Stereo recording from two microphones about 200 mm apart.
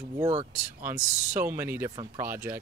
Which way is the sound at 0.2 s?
25° right (ahead or behind).